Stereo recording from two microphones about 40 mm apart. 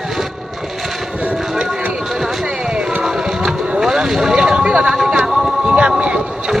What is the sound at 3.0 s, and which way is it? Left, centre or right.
Vehicle, centre.